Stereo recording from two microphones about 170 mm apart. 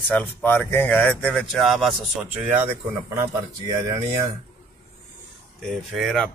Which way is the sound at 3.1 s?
20° right (ahead or behind).